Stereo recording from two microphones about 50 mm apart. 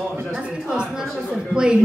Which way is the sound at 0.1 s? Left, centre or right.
Right.